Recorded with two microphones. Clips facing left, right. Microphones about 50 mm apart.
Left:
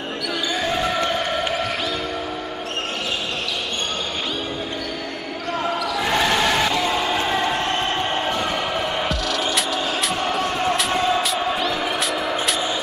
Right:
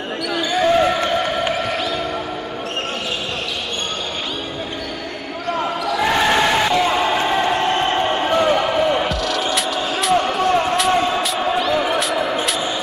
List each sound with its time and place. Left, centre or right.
0.6 s a sound: centre
5.9 s basketball bounce: centre
9.1 s music: centre